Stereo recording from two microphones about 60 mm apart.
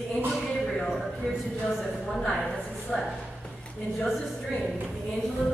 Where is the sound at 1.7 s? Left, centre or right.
Centre.